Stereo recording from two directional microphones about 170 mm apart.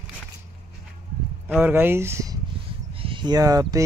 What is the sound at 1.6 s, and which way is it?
Speech, 15° right (ahead or behind).